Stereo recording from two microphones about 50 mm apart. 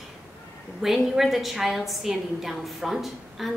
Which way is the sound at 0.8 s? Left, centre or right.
Centre.